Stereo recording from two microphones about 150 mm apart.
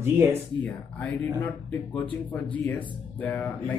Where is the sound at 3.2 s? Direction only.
10° left (ahead or behind).